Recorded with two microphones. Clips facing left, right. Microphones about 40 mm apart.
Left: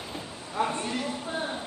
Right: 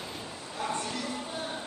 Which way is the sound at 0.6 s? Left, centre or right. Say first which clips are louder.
Left 5 dB; left.